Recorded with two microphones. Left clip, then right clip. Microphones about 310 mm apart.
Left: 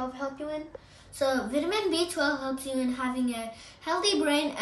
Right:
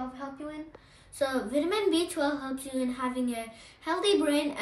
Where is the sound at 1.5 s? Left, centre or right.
Centre.